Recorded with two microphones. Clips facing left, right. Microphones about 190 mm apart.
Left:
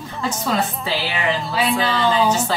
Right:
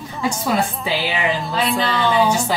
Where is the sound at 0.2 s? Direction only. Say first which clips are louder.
Right 2 dB; 10° right (ahead or behind).